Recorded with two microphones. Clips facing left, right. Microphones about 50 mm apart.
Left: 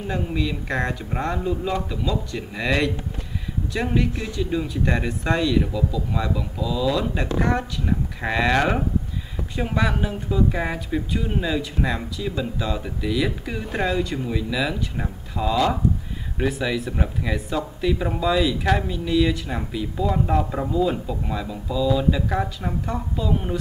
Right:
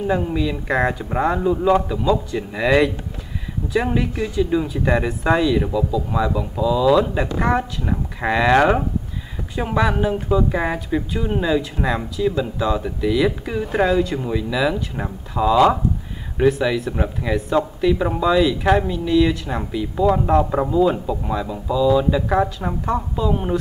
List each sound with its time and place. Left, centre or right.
0.0 s speech: centre
15.5 s speech: centre
16.3 s speech: centre